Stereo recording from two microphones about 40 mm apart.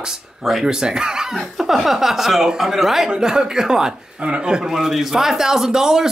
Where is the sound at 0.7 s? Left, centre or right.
Centre.